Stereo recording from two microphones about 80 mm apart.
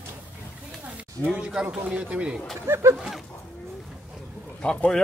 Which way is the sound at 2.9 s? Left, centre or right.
Centre.